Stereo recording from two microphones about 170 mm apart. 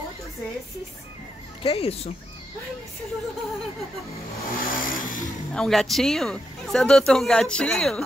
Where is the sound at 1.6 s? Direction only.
35° left (ahead or behind).